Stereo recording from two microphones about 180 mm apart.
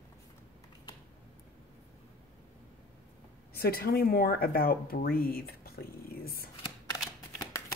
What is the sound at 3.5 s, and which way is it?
Speech, 60° left (ahead or behind).